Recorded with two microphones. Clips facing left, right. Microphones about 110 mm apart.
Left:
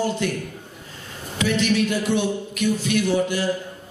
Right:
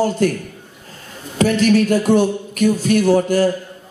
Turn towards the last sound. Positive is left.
turn(degrees=-45)  # may be behind; listen again after turning